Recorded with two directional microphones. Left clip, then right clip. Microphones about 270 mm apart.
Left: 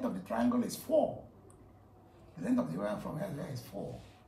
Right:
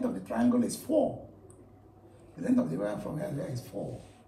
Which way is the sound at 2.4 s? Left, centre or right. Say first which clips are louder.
Right 4 dB; left.